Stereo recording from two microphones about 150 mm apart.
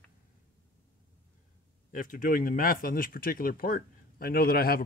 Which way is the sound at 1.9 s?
65° left (ahead or behind).